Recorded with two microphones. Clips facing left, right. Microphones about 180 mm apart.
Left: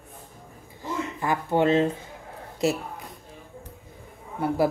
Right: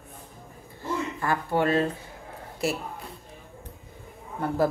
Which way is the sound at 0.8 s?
15° left (ahead or behind).